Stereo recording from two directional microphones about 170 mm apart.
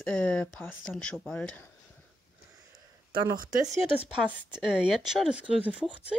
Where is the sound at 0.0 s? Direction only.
10° left (ahead or behind).